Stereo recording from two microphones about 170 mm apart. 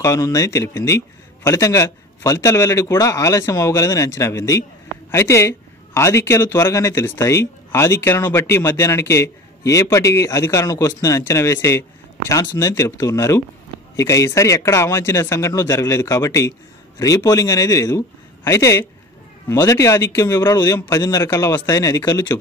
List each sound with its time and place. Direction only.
0.0 s a man's voice: 20° left (ahead or behind)